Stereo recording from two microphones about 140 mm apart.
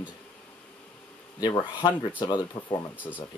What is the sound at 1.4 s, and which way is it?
Speech, 30° left (ahead or behind).